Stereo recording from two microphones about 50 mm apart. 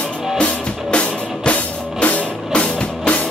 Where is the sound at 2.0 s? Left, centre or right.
Left.